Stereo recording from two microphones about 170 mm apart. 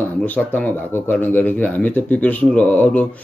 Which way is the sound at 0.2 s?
10° left (ahead or behind).